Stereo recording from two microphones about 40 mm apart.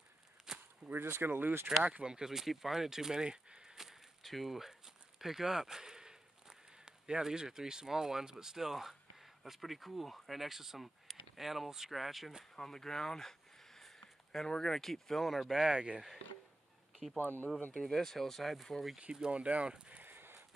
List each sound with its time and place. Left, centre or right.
0.5 s a sound: centre
0.8 s speech: right
1.8 s speech: right
2.0 s speech: centre
3.3 s a sound: right
3.7 s a sound: centre
4.2 s speech: centre
12.5 s speech: centre
17.2 s speech: left
17.7 s speech: centre
19.3 s speech: right
20.0 s a sound: right